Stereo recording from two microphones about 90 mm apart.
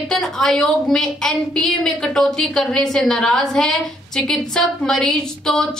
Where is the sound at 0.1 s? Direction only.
5° left (ahead or behind).